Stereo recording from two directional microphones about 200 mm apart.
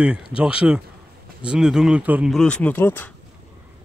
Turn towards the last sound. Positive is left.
turn(degrees=10)  # may be behind; listen again after turning